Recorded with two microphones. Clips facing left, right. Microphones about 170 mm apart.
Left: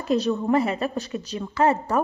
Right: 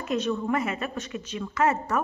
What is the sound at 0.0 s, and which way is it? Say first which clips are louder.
A woman's voice: left 4 dB; 35° left (ahead or behind).